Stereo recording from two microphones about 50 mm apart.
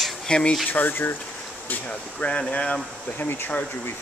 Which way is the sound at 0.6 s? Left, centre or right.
Left.